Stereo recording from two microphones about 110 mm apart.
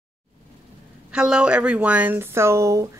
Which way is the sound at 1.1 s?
5° right (ahead or behind).